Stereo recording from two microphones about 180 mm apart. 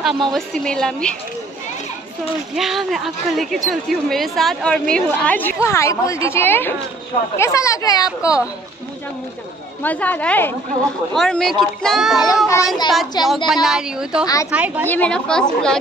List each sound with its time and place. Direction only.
0.0 s speech: centre (ahead or behind)
2.5 s a woman's voice: centre (ahead or behind); by 8.4 s 20° left (ahead or behind)
9.8 s a woman's voice: 10° left (ahead or behind)
12.4 s a child's voice: 20° left (ahead or behind)
13.5 s speech: centre (ahead or behind)
14.2 s a child's voice: 20° left (ahead or behind)
14.5 s a woman's voice: 10° right (ahead or behind)
14.9 s speech: 5° left (ahead or behind)